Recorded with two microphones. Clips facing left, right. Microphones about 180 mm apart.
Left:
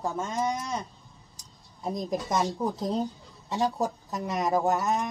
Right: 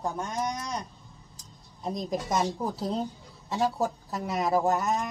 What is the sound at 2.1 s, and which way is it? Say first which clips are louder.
Speech: even; centre (ahead or behind).